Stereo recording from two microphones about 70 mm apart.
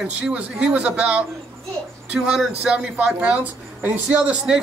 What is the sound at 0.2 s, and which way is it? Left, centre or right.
Speech, centre.